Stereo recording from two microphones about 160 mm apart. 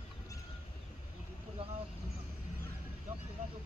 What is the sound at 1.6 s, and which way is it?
Vehicle, 35° right (ahead or behind).